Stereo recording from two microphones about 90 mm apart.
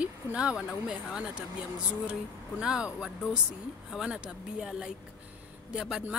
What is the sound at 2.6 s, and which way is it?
Speech, 10° right (ahead or behind).